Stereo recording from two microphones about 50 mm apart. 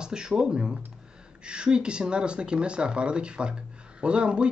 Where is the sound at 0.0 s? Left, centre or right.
Centre.